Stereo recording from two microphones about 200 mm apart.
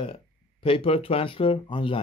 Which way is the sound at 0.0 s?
25° left (ahead or behind).